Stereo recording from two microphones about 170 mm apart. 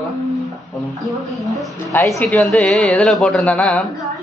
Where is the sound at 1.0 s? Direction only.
Centre (ahead or behind).